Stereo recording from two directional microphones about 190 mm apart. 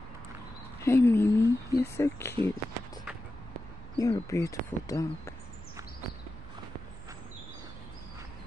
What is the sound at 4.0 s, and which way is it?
Speech, 15° left (ahead or behind).